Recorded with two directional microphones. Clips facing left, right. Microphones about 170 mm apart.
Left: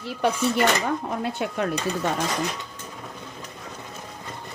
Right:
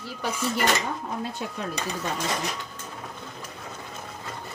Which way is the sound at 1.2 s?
70° left (ahead or behind).